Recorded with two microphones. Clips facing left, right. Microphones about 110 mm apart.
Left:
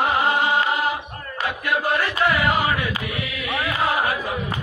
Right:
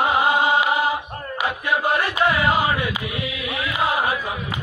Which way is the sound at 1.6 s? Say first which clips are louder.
Even; 20° right (ahead or behind).